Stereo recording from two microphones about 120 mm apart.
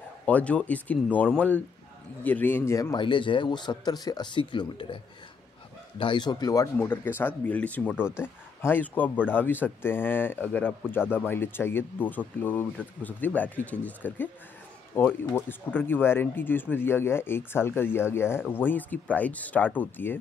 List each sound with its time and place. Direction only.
0.3 s speech: 10° left (ahead or behind); by 3.0 s 25° left (ahead or behind)
3.0 s speech: 45° left (ahead or behind); by 20.2 s 15° left (ahead or behind)